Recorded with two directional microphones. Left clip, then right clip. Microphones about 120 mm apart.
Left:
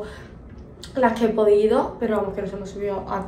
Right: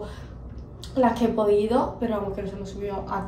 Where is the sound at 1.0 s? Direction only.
15° right (ahead or behind).